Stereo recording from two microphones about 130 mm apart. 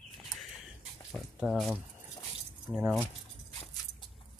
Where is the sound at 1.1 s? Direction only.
Centre (ahead or behind).